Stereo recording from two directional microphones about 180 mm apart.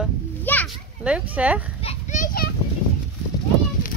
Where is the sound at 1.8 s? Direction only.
45° left (ahead or behind).